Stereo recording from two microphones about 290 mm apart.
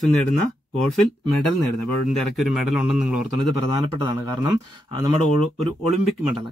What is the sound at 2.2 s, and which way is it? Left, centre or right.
Speech, centre.